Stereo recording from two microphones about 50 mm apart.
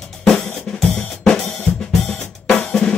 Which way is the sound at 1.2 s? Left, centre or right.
Centre.